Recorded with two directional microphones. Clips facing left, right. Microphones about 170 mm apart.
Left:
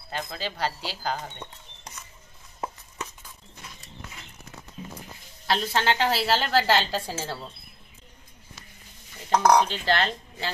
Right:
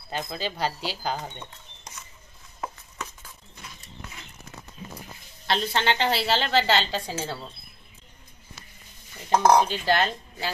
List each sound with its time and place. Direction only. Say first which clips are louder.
0.1 s speech: right 2 dB; 15° right (ahead or behind)
5.5 s a woman's voice: even; 5° left (ahead or behind)
9.3 s speech: right 1 dB; 25° right (ahead or behind)
9.6 s speech: right 1 dB; 10° right (ahead or behind)